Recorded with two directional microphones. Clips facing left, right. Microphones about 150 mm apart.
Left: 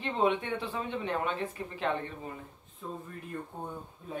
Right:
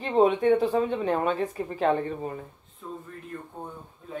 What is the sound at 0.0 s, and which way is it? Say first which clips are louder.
A woman's voice: right 8 dB; 40° right (ahead or behind).